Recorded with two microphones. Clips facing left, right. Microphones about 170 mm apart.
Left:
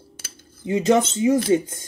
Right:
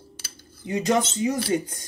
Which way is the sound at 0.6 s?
25° left (ahead or behind).